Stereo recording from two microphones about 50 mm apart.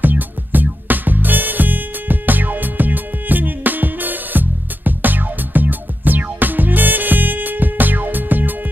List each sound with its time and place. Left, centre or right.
0.0 s music: right